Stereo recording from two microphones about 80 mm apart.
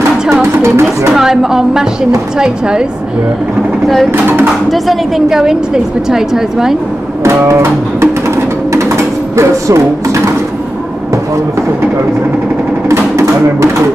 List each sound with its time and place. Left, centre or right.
0.6 s speech: right
1.1 s a woman's voice: centre
3.8 s a woman's voice: centre
7.2 s music: right
8.7 s a sound: right
12.9 s music: right